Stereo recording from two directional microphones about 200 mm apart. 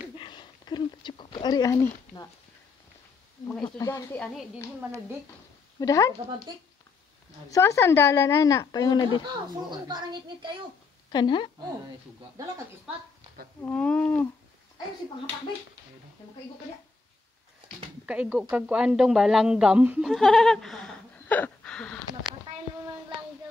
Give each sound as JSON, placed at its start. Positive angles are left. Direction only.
{"t": 0.2, "sound": "a sound", "side_deg": 25}
{"t": 3.7, "sound": "speech", "side_deg": 15}
{"t": 5.8, "sound": "speech", "side_deg": 15}
{"t": 7.5, "sound": "speech", "side_deg": 15}
{"t": 9.2, "sound": "speech", "side_deg": -20}
{"t": 11.1, "sound": "speech", "side_deg": 20}
{"t": 13.6, "sound": "speech", "side_deg": 5}
{"t": 18.0, "sound": "a woman's voice", "side_deg": -5}